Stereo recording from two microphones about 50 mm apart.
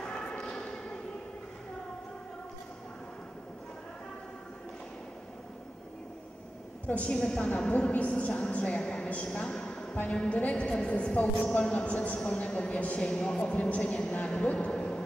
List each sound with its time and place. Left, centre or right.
0.0 s a sound: centre
6.9 s a woman's voice: left
11.4 s speech: centre
11.7 s a woman's voice: left